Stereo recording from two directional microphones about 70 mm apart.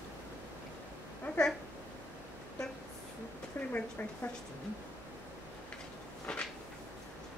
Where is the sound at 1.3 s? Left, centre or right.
Centre.